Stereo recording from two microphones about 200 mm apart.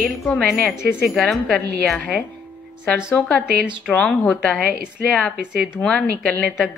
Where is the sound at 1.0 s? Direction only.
Centre (ahead or behind).